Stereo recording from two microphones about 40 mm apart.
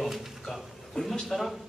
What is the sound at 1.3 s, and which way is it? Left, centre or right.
Speech, centre.